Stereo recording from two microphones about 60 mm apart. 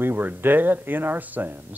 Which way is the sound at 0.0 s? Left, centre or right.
Right.